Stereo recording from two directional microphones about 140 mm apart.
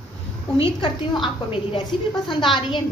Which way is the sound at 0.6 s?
40° left (ahead or behind).